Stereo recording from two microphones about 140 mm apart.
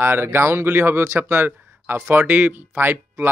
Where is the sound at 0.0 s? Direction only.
15° right (ahead or behind).